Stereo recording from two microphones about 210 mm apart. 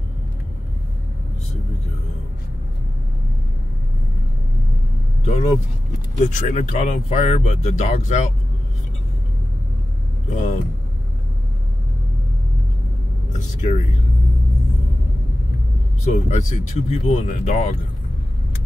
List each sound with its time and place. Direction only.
5.2 s speech: 30° left (ahead or behind)
10.3 s speech: 35° left (ahead or behind)
13.6 s speech: 35° left (ahead or behind)
16.0 s speech: 35° left (ahead or behind)